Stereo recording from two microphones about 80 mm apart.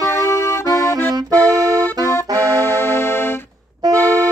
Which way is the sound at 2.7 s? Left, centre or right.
Left.